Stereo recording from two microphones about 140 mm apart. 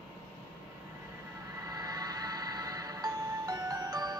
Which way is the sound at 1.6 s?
25° right (ahead or behind).